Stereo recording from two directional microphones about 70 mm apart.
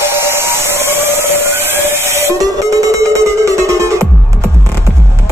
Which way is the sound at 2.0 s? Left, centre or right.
Right.